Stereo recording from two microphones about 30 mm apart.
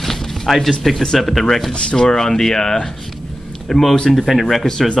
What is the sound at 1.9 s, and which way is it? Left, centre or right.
Speech, centre.